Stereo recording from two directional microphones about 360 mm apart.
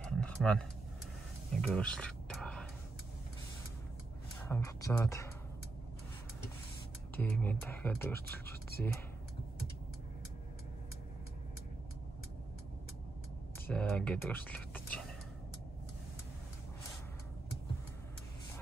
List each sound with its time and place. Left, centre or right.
0.2 s a sound: centre
1.6 s whispering: centre
4.4 s speech: centre
7.2 s speech: centre
13.7 s speech: centre